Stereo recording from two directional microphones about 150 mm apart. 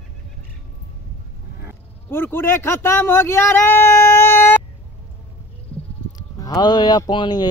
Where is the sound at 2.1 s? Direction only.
15° left (ahead or behind).